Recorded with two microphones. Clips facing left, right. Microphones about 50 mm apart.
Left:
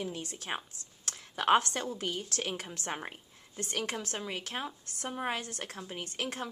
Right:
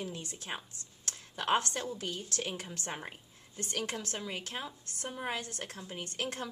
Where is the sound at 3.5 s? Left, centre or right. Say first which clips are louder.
Left 2 dB; left.